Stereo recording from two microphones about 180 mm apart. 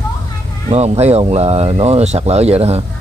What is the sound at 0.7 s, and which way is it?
Speech, 35° right (ahead or behind).